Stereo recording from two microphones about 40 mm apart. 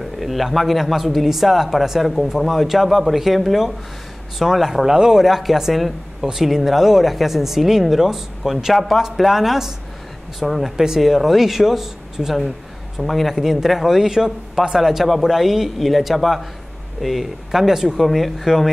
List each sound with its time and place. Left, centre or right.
0.0 s a man's voice: centre
5.2 s a man's voice: centre